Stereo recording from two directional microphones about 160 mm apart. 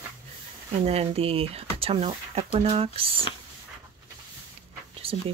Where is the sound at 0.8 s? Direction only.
40° right (ahead or behind).